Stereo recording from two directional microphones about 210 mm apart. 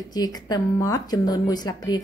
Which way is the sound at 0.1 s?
20° left (ahead or behind).